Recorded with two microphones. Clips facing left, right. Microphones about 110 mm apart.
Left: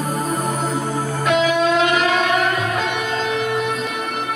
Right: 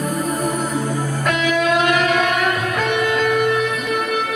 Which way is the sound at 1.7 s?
55° right (ahead or behind).